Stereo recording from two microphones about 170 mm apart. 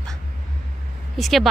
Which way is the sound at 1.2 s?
Centre (ahead or behind).